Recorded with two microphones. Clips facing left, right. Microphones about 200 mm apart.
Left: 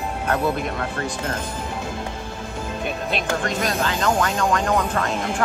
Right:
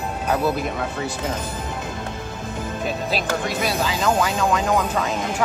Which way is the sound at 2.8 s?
5° right (ahead or behind).